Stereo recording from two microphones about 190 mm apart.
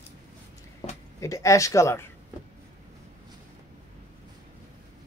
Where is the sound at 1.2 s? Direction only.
15° left (ahead or behind).